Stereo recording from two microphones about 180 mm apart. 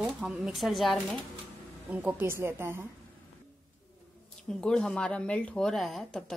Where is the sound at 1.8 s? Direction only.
10° right (ahead or behind).